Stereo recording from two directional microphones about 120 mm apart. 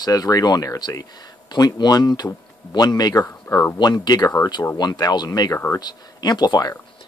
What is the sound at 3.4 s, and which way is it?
Speech, 20° left (ahead or behind).